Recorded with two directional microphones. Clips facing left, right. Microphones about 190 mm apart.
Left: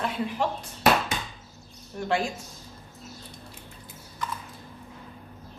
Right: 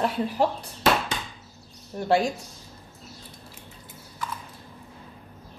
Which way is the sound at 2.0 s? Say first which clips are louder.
Right 5 dB; 35° right (ahead or behind).